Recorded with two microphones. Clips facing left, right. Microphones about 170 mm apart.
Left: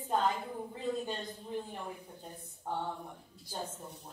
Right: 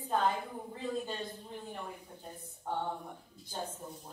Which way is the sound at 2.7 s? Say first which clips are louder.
Right 1 dB; 10° left (ahead or behind).